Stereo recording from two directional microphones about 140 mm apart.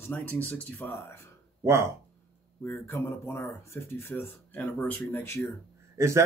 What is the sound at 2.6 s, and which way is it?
Speech, 15° left (ahead or behind).